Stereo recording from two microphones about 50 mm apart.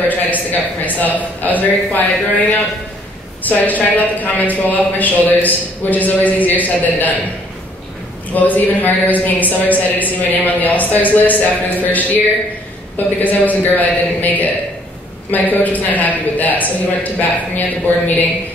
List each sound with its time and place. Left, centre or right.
0.1 s a woman's voice: left
3.4 s a woman's voice: left
8.3 s a woman's voice: left